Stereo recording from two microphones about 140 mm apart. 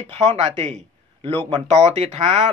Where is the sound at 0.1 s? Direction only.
55° right (ahead or behind).